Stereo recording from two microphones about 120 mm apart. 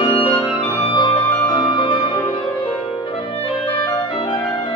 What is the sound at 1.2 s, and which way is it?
Music, 15° left (ahead or behind).